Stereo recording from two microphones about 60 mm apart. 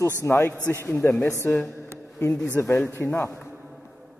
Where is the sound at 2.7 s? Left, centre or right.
Left.